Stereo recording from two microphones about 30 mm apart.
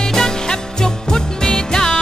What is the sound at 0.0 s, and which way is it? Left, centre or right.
Music, left.